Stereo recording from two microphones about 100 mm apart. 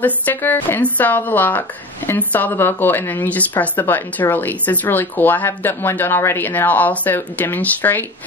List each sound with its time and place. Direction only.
0.0 s a woman's voice: 15° left (ahead or behind)